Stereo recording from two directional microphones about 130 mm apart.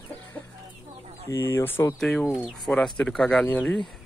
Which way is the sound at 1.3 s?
25° left (ahead or behind).